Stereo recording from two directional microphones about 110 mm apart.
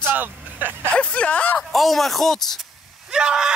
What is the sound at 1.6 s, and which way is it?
A man's voice, centre (ahead or behind).